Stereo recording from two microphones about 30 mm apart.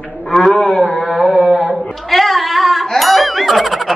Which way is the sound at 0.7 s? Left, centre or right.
Centre.